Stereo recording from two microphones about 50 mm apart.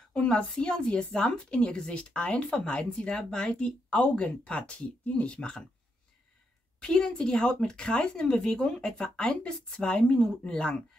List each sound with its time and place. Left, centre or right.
0.1 s speech: centre
6.8 s speech: centre